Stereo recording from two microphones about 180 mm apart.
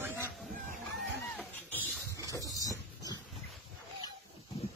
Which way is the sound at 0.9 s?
10° left (ahead or behind).